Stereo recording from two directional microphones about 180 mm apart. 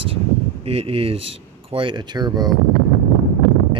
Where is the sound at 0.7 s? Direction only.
35° right (ahead or behind).